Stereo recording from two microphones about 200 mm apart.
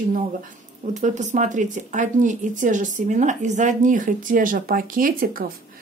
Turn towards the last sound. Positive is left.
turn(degrees=-45)  # may be behind; listen again after turning